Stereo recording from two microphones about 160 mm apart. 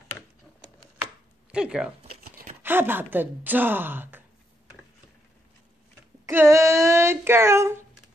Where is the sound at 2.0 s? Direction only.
65° right (ahead or behind).